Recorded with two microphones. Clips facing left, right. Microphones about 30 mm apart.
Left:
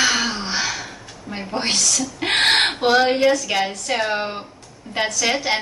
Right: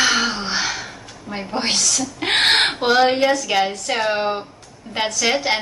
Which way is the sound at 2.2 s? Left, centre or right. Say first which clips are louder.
Right 1 dB; centre.